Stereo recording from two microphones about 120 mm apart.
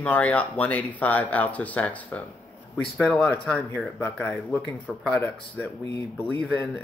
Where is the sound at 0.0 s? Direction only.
10° left (ahead or behind).